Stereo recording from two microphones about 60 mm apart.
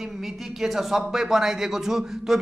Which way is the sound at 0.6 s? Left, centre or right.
Centre.